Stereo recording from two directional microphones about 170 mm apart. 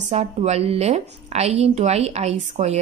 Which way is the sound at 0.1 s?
40° right (ahead or behind).